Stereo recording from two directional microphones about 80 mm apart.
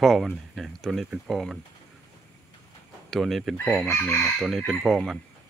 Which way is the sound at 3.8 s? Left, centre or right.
Left.